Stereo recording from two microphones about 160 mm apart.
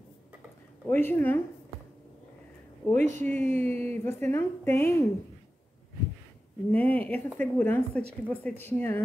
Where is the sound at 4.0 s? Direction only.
15° left (ahead or behind).